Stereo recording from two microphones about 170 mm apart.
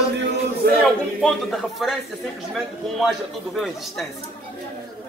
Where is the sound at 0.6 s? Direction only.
60° right (ahead or behind).